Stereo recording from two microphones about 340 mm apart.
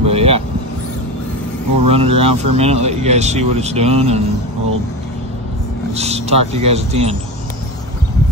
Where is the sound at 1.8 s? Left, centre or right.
Centre.